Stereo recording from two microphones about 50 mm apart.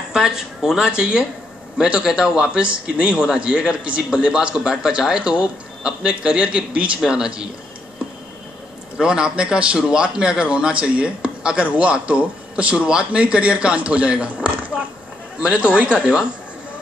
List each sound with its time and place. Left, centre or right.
0.1 s a man's voice: centre
8.9 s a man's voice: centre